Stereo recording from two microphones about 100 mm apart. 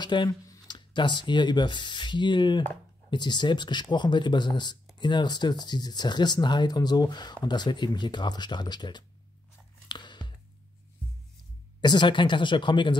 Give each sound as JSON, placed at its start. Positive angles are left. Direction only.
{"t": 0.0, "sound": "speech", "side_deg": 50}
{"t": 9.8, "sound": "a sound", "side_deg": 50}
{"t": 11.8, "sound": "speech", "side_deg": 50}